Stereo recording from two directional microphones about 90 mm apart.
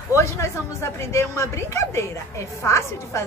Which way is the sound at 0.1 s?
30° left (ahead or behind).